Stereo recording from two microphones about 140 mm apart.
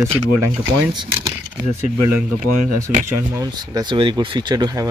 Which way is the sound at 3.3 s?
25° right (ahead or behind).